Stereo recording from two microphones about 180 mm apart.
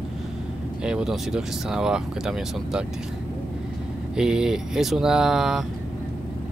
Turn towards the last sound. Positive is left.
turn(degrees=0)  # may be behind; listen again after turning